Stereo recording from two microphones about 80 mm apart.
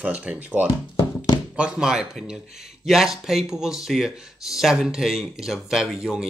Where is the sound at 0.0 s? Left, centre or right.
Centre.